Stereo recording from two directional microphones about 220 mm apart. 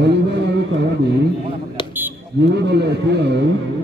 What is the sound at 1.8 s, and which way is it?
Fire alarm, 20° left (ahead or behind).